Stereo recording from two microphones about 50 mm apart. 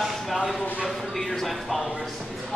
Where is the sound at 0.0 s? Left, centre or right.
Centre.